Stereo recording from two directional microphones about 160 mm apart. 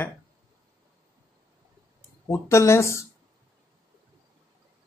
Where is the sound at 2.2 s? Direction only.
20° left (ahead or behind).